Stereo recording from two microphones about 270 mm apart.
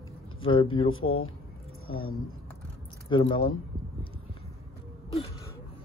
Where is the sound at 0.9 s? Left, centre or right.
Left.